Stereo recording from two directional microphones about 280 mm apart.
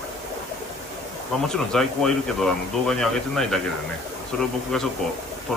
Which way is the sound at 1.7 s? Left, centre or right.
Centre.